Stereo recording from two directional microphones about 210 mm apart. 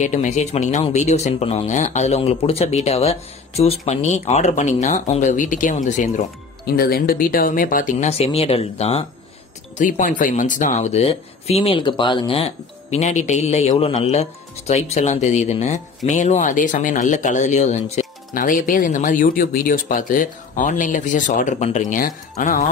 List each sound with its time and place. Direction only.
0.0 s speech: 35° left (ahead or behind)
6.6 s speech: 45° left (ahead or behind)